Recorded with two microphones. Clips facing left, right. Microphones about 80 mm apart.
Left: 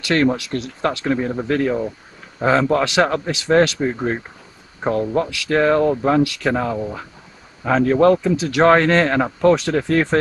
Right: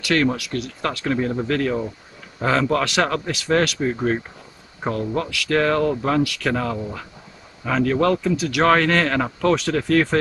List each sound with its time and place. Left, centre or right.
0.0 s speech: left